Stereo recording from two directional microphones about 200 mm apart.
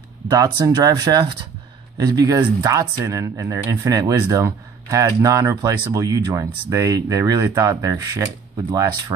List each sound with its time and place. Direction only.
0.3 s speech: 20° right (ahead or behind)